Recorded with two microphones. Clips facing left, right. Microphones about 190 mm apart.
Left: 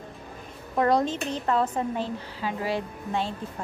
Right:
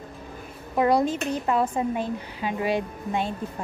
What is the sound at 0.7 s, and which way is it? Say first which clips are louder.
A woman's voice: right 2 dB; 10° right (ahead or behind).